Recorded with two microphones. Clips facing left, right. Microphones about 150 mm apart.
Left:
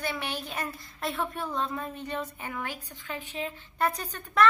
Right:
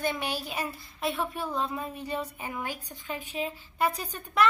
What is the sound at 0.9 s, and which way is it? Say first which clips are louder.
A woman's voice: right 1 dB; centre (ahead or behind).